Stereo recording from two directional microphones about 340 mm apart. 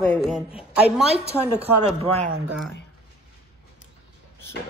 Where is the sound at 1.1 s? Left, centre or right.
Centre.